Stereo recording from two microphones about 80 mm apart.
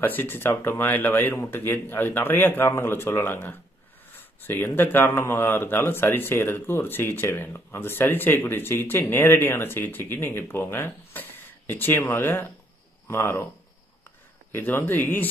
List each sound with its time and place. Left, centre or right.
0.0 s speech: left
14.5 s speech: left